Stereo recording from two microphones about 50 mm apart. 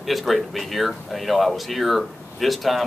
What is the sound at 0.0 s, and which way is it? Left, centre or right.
Speech, centre.